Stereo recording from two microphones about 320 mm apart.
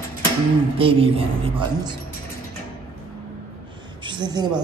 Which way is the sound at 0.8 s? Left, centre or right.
Centre.